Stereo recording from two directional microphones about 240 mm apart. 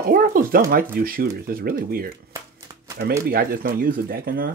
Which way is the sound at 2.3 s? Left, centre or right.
Centre.